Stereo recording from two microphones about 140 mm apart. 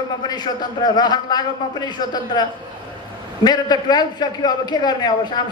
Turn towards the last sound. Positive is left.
turn(degrees=30)  # may be behind; listen again after turning